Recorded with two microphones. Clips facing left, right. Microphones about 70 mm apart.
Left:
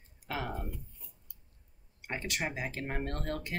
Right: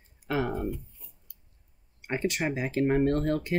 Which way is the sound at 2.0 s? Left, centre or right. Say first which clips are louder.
Right 7 dB; right.